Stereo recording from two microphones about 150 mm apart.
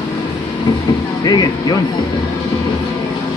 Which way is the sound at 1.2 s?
25° left (ahead or behind).